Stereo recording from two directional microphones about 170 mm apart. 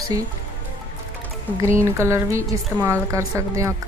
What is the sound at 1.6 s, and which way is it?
Speech, 15° right (ahead or behind).